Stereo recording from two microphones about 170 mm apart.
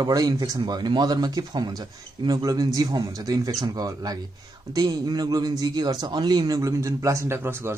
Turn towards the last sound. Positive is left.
turn(degrees=-15)  # may be behind; listen again after turning